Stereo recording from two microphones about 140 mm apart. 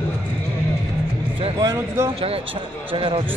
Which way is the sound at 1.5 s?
20° right (ahead or behind).